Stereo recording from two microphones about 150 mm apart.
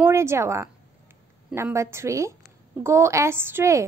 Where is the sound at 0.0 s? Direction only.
15° right (ahead or behind).